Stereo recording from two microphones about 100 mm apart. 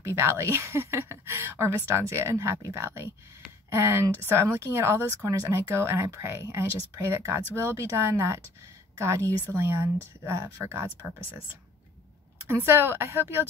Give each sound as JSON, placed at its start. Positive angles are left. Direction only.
{"t": 0.0, "sound": "speech", "side_deg": -25}
{"t": 12.4, "sound": "speech", "side_deg": -25}